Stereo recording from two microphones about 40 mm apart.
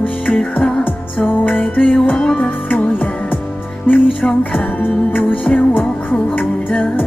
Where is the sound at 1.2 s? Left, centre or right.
Left.